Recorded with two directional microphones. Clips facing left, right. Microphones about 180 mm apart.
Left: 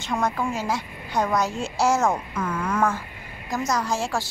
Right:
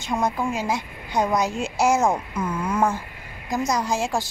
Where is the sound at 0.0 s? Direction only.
15° right (ahead or behind).